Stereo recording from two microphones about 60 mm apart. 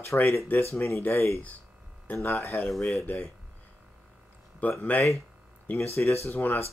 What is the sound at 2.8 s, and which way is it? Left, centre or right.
Speech, left.